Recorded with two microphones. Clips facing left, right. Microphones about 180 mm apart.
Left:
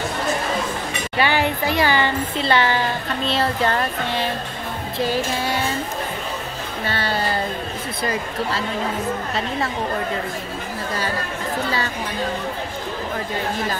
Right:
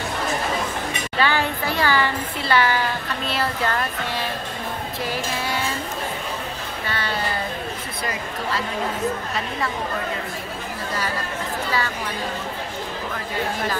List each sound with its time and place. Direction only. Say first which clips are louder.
1.2 s speech: left 2 dB; 15° left (ahead or behind)
6.9 s speech: left 3 dB; 30° left (ahead or behind)